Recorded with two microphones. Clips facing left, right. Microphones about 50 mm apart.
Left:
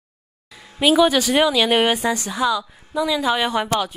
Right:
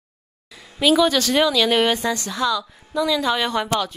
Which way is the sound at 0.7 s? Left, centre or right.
Centre.